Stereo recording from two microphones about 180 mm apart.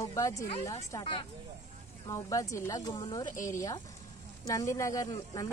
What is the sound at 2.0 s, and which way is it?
Speech, 20° left (ahead or behind).